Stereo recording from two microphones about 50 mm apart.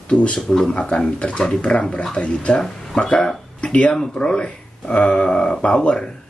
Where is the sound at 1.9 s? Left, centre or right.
Centre.